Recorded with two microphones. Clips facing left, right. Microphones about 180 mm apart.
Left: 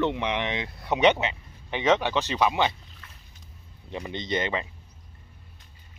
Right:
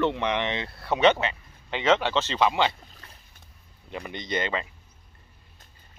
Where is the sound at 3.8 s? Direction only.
20° left (ahead or behind).